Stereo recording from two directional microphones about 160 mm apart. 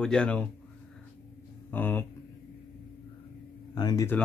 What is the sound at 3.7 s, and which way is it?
Speech, 25° left (ahead or behind).